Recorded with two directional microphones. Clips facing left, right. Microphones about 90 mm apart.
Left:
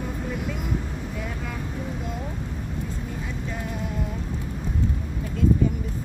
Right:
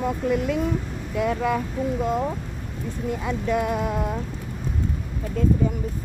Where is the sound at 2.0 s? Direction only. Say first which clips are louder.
Right 9 dB; 50° right (ahead or behind).